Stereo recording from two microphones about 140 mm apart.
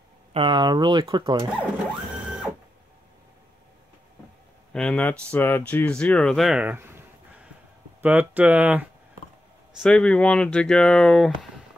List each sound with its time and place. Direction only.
0.3 s speech: 35° right (ahead or behind)
4.7 s speech: 5° left (ahead or behind); by 8.8 s 10° right (ahead or behind)
9.8 s speech: 5° left (ahead or behind)